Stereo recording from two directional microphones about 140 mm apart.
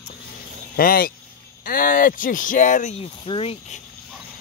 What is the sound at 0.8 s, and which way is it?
Speech, 90° left.